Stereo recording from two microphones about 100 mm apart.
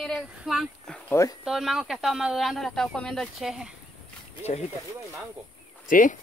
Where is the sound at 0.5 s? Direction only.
Centre (ahead or behind).